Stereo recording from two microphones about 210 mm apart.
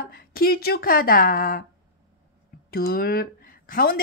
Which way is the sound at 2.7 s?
45° left (ahead or behind).